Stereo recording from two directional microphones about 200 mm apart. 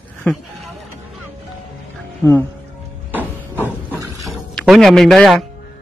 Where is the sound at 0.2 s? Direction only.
Centre (ahead or behind).